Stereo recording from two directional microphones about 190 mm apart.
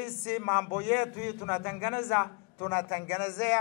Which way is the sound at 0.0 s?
15° left (ahead or behind).